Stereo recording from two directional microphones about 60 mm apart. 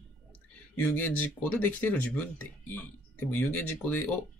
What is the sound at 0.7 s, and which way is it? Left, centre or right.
Speech, left.